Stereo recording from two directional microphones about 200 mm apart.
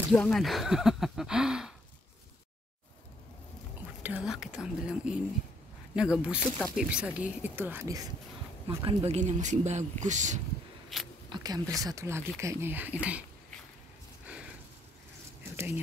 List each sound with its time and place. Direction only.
0.1 s speech: 5° left (ahead or behind)
4.0 s speech: 5° right (ahead or behind)
8.6 s speech: 30° right (ahead or behind)
10.9 s speech: centre (ahead or behind)
11.2 s speech: 20° right (ahead or behind)
14.2 s a sound: 5° right (ahead or behind)
15.5 s speech: 10° right (ahead or behind)